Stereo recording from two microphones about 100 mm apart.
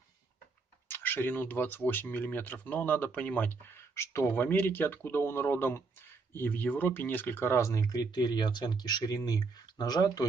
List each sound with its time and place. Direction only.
0.8 s speech: 20° left (ahead or behind); by 10.2 s 40° left (ahead or behind)